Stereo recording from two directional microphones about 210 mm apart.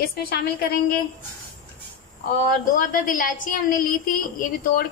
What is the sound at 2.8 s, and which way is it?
A woman's voice, 40° left (ahead or behind).